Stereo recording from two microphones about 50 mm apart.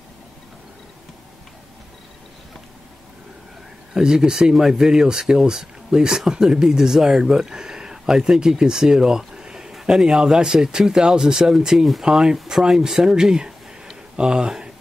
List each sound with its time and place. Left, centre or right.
3.9 s speech: centre